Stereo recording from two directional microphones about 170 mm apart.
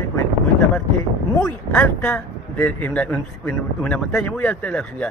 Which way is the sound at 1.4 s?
5° left (ahead or behind).